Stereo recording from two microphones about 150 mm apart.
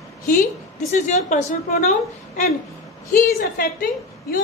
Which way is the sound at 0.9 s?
50° left (ahead or behind).